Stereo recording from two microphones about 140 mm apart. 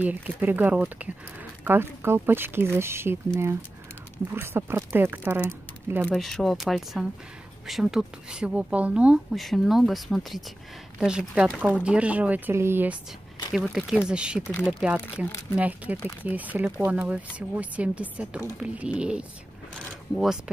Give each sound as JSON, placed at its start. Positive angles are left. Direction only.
{"t": 0.0, "sound": "speech", "side_deg": -15}
{"t": 4.3, "sound": "speech", "side_deg": -15}
{"t": 6.1, "sound": "speech", "side_deg": 0}
{"t": 13.5, "sound": "speech", "side_deg": -5}